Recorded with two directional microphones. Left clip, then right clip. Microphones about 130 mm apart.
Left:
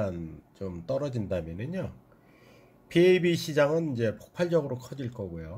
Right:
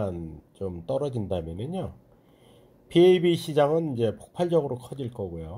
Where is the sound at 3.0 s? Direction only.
30° left (ahead or behind).